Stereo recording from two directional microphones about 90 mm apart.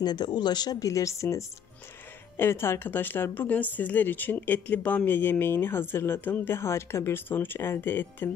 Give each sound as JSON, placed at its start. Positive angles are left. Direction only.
{"t": 0.0, "sound": "speech", "side_deg": 50}